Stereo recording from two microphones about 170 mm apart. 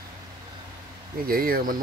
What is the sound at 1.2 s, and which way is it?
Speech, 60° right (ahead or behind).